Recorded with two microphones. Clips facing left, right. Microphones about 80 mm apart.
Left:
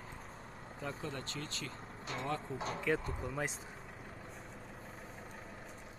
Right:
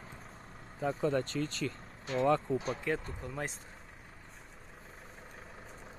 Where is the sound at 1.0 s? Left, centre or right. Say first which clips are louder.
Right 11 dB; right.